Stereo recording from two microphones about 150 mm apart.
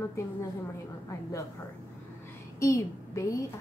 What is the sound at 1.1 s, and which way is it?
Speech, 20° left (ahead or behind).